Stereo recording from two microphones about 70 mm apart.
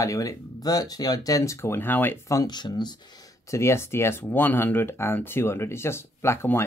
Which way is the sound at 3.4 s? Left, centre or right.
Left.